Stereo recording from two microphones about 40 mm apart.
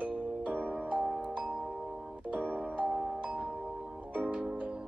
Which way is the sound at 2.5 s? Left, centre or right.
Right.